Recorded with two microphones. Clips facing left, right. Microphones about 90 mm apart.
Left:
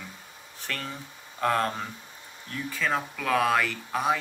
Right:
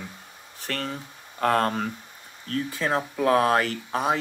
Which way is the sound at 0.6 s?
50° right (ahead or behind).